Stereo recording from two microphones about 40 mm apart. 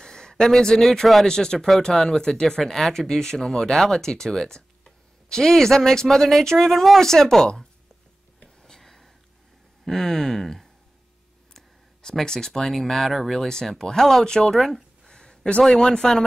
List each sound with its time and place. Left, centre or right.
0.0 s a sound: centre
1.2 s speech: centre
8.6 s whispering: centre
9.8 s speech: centre
11.5 s a sound: centre
12.7 s speech: centre
13.5 s speech: centre
15.0 s a sound: centre
15.6 s speech: centre